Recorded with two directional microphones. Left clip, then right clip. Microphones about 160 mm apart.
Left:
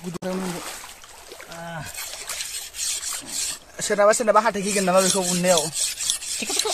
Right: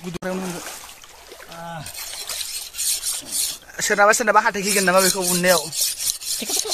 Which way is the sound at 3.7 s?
Centre (ahead or behind).